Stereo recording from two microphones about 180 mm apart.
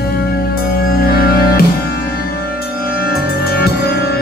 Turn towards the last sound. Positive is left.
turn(degrees=65)  # may be behind; listen again after turning